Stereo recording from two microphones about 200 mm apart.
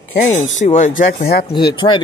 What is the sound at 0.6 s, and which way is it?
Speech, 35° left (ahead or behind).